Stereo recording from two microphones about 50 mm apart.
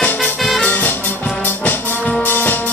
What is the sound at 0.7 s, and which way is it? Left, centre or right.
Music, left.